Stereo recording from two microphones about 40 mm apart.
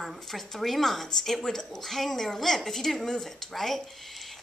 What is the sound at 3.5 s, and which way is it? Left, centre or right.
Speech, centre.